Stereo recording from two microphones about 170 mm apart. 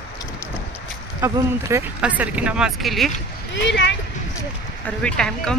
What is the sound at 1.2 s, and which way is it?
Speech, 15° right (ahead or behind).